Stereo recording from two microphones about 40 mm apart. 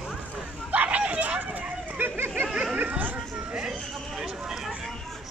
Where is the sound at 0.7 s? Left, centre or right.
Right.